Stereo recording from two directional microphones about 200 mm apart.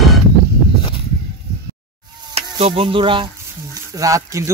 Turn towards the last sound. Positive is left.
turn(degrees=-15)  # may be behind; listen again after turning